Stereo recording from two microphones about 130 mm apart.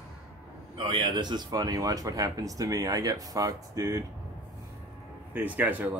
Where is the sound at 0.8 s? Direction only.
40° right (ahead or behind).